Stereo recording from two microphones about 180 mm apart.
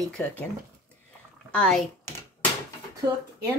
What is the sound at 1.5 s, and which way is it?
Speech, 5° left (ahead or behind).